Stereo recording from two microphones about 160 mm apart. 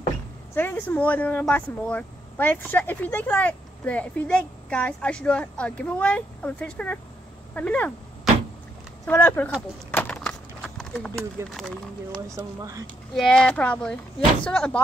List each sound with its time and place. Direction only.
0.6 s speech: 10° left (ahead or behind)
9.0 s speech: 10° left (ahead or behind)
9.8 s a sound: 10° left (ahead or behind)
11.5 s speech: 5° left (ahead or behind)
12.3 s speech: 20° right (ahead or behind)
13.1 s speech: 5° left (ahead or behind)